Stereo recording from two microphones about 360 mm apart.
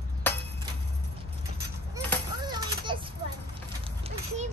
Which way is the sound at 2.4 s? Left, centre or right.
Centre.